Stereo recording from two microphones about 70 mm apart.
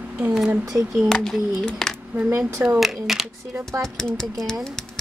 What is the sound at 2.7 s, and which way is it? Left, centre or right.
Speech, centre.